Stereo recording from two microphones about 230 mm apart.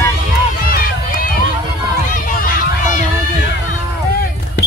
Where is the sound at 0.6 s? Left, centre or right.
Left.